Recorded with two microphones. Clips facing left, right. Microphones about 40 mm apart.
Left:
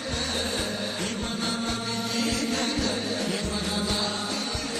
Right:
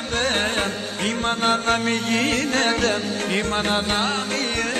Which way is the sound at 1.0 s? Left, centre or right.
Right.